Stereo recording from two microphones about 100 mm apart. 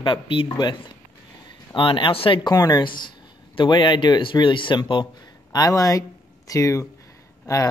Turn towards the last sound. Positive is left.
turn(degrees=35)  # may be behind; listen again after turning